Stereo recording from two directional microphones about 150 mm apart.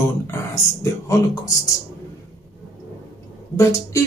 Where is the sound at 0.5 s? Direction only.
20° left (ahead or behind).